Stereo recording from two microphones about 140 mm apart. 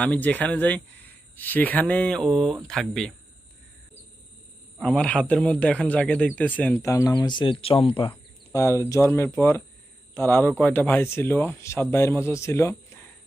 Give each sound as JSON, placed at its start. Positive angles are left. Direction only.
{"t": 0.0, "sound": "a man's voice", "side_deg": 10}
{"t": 4.8, "sound": "a man's voice", "side_deg": 5}
{"t": 8.5, "sound": "a man's voice", "side_deg": 20}